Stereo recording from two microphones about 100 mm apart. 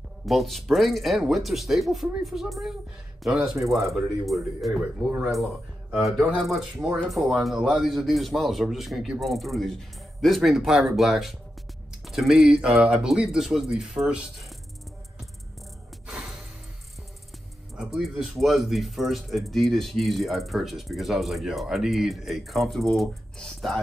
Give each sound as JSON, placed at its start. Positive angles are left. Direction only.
{"t": 0.3, "sound": "speech", "side_deg": 0}
{"t": 3.5, "sound": "speech", "side_deg": -30}
{"t": 3.8, "sound": "speech", "side_deg": 0}
{"t": 17.7, "sound": "speech", "side_deg": -5}